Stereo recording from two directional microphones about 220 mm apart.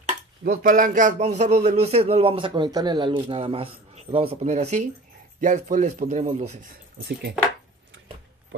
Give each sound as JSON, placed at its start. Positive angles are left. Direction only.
{"t": 0.4, "sound": "a man's voice", "side_deg": -40}
{"t": 7.1, "sound": "speech", "side_deg": -45}